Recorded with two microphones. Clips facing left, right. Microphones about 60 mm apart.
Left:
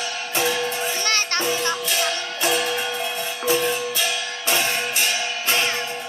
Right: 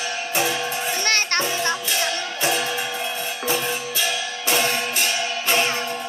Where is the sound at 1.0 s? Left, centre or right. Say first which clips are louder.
Right 2 dB; right.